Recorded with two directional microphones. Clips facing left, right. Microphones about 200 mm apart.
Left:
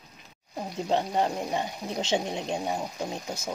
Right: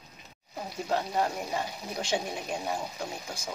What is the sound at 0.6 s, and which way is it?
Speech, 20° left (ahead or behind).